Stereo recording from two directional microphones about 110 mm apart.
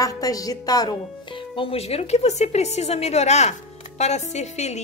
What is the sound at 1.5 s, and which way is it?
A woman's voice, 60° left (ahead or behind).